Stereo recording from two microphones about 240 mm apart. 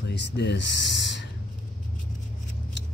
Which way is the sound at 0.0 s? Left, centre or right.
Left.